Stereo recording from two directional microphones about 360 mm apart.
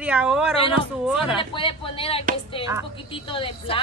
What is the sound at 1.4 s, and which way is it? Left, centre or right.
A woman's voice, centre.